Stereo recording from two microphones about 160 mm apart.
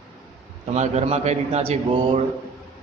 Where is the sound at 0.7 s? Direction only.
45° right (ahead or behind).